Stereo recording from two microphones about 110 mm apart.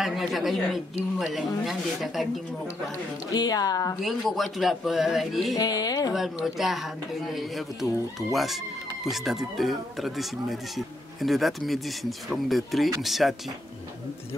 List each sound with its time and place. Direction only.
0.0 s speech: centre (ahead or behind)
3.3 s speech: 35° left (ahead or behind)
4.0 s speech: centre (ahead or behind)
5.5 s speech: 35° left (ahead or behind)
6.1 s speech: centre (ahead or behind)